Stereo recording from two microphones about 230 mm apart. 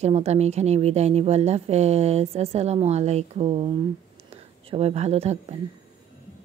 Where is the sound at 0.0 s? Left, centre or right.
Right.